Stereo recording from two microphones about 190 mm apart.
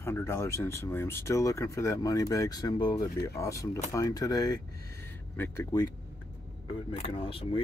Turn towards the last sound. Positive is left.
turn(degrees=30)  # may be behind; listen again after turning